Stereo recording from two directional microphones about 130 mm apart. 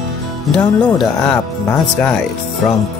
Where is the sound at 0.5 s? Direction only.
5° left (ahead or behind).